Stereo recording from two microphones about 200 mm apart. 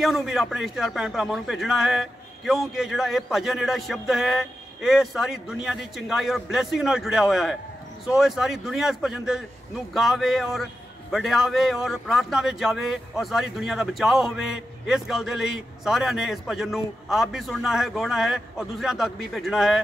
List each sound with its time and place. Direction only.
0.0 s speech: centre (ahead or behind)